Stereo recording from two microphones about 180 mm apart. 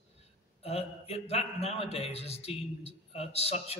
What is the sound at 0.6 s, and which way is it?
A man's voice, 35° left (ahead or behind).